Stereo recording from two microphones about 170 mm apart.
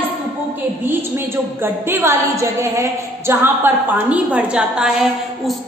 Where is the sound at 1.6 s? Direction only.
15° right (ahead or behind).